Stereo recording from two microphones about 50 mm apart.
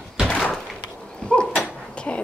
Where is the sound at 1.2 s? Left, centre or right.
Centre.